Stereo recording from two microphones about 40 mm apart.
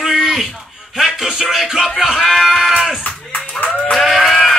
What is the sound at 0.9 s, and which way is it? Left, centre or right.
Music, centre.